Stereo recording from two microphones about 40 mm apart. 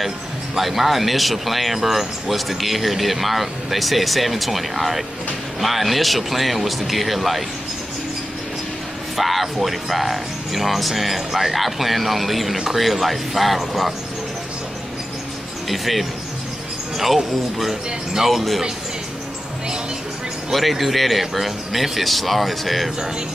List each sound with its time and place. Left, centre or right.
0.6 s speech: centre
9.1 s speech: centre
15.7 s speech: centre
20.5 s speech: centre